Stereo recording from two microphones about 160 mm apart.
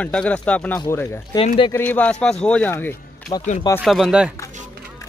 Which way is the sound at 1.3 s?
30° left (ahead or behind).